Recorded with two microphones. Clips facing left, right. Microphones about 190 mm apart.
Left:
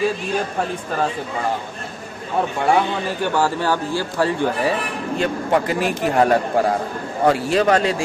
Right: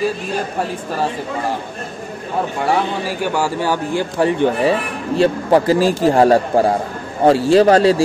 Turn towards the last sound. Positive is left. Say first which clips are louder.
# right 6 dB
turn(degrees=-35)  # may be behind; listen again after turning